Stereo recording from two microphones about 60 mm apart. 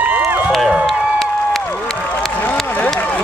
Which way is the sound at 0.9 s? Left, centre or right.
Centre.